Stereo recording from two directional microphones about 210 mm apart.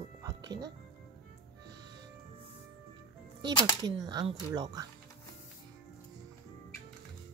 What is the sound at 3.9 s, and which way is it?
A woman's voice, 20° right (ahead or behind).